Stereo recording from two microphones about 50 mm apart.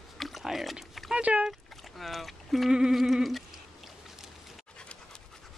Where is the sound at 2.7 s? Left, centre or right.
Centre.